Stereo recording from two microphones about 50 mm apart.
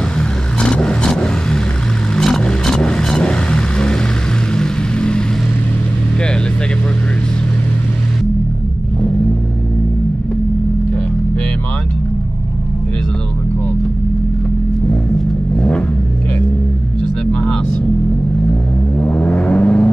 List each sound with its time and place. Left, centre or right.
0.6 s vehicle: centre
15.5 s vehicle: left
17.3 s vehicle: left